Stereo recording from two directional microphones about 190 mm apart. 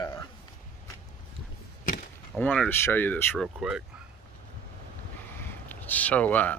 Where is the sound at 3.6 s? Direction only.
5° right (ahead or behind).